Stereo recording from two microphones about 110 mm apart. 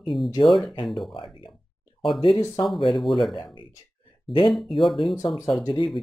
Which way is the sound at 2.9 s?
Centre (ahead or behind).